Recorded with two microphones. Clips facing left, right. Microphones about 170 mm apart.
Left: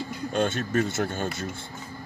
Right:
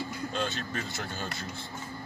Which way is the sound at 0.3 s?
50° left (ahead or behind).